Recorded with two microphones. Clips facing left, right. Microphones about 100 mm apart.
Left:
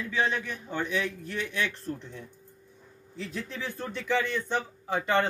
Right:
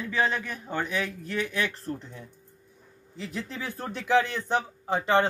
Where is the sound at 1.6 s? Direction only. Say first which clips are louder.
Right 1 dB; 50° right (ahead or behind).